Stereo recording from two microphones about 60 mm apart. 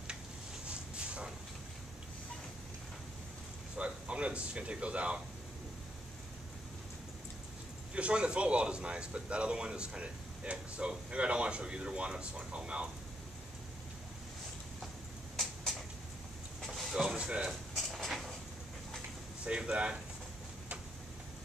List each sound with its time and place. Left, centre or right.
0.7 s dog: centre
3.7 s speech: centre
7.9 s speech: centre
16.6 s a sound: centre
19.4 s speech: centre